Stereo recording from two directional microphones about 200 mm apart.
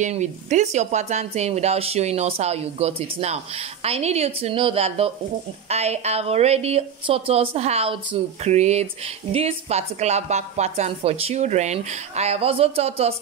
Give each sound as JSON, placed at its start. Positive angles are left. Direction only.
{"t": 0.0, "sound": "speech", "side_deg": -35}